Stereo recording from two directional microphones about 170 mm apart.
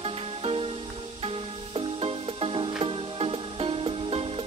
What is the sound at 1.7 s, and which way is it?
Music, 30° right (ahead or behind).